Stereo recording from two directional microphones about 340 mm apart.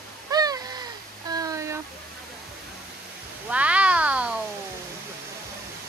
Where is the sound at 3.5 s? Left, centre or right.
Centre.